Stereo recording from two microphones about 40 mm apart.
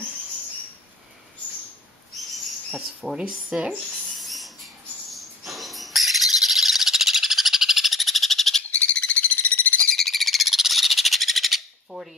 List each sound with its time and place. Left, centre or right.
2.1 s owl: centre
3.5 s speech: centre
4.2 s rodents: centre
5.1 s owl: centre
8.7 s a sound: left
9.9 s bird: centre